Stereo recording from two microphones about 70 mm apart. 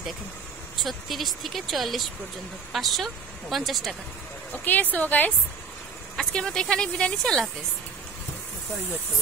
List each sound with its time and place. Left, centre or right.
0.8 s speech: centre
4.6 s a woman's voice: left
6.1 s speech: centre